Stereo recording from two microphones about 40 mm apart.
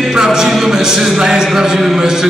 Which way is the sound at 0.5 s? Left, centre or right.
Centre.